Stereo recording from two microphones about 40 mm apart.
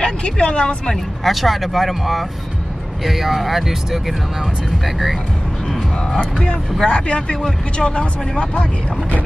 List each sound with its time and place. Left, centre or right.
0.0 s speech: left
1.2 s speech: centre
6.8 s speech: left